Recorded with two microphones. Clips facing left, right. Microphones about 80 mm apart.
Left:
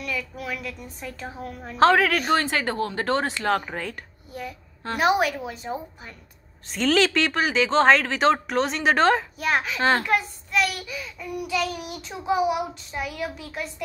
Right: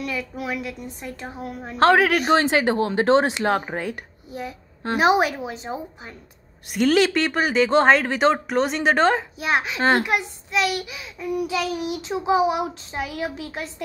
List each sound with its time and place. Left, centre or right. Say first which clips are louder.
0.0 s a woman's voice: right 3 dB; right
6.7 s speech: right 3 dB; centre
9.4 s a child's voice: right 1 dB; centre
11.1 s a woman's voice: right 3 dB; right